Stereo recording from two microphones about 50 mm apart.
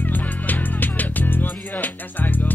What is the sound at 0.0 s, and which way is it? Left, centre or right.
Music, left.